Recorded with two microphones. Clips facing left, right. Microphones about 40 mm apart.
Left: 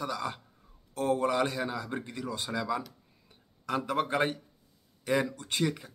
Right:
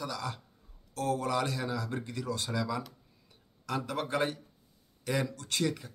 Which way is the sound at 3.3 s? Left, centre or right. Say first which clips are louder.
Left 3 dB; centre.